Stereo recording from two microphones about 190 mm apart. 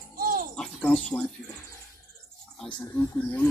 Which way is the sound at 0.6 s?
5° left (ahead or behind).